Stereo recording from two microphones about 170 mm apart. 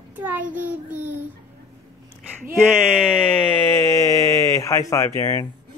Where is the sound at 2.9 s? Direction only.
5° left (ahead or behind).